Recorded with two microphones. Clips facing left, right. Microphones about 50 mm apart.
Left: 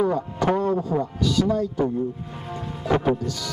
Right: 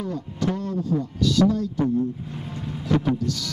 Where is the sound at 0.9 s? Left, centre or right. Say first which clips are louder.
Left 1 dB; left.